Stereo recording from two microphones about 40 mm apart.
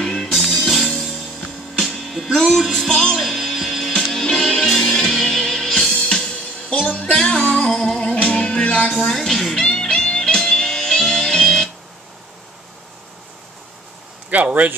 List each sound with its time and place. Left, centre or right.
0.0 s music: centre
0.3 s music: centre
2.9 s music: centre
3.2 s music: centre
4.1 s music: centre
5.9 s music: left
8.0 s music: left
9.0 s music: centre
9.6 s music: centre
14.3 s speech: right